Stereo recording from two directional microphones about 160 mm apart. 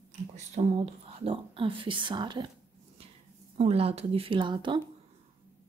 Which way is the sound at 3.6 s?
40° right (ahead or behind).